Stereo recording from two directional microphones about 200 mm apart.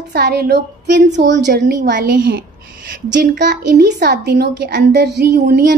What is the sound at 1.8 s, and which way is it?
Speech, 40° right (ahead or behind).